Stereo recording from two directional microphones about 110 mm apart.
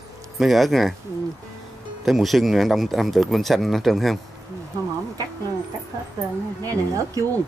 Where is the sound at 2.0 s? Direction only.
Centre (ahead or behind).